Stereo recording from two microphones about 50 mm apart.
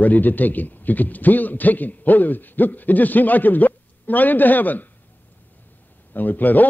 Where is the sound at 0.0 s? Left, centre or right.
Left.